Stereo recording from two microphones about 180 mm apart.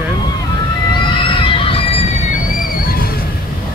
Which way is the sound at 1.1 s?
30° left (ahead or behind).